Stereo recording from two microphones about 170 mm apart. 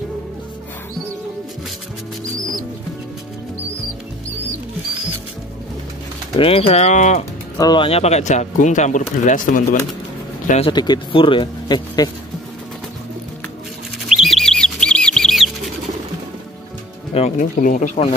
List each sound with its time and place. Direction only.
2.3 s music: 20° right (ahead or behind)
6.3 s speech: 35° left (ahead or behind)
7.5 s speech: 25° left (ahead or behind); by 9.6 s 45° left (ahead or behind)
10.6 s speech: 25° left (ahead or behind)
14.0 s bird: centre (ahead or behind)
17.1 s speech: 45° left (ahead or behind)